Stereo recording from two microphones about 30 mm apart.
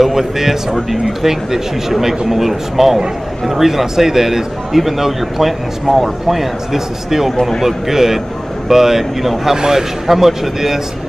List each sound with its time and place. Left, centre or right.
0.0 s a man's voice: centre